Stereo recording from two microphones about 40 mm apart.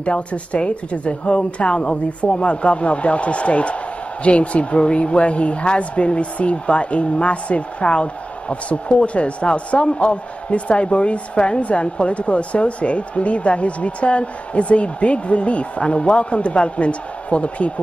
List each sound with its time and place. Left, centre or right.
0.0 s a woman's voice: left